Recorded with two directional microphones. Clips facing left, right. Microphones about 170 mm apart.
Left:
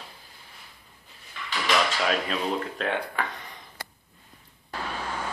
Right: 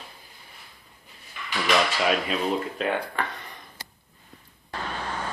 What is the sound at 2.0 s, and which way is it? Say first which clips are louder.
Speech: right 2 dB; 5° right (ahead or behind).